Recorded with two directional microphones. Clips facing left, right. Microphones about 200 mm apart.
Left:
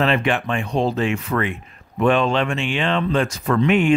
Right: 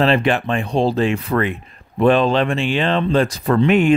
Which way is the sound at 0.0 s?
35° right (ahead or behind).